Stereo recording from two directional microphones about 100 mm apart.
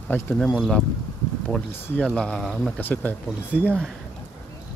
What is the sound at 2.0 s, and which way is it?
Speech, 10° left (ahead or behind).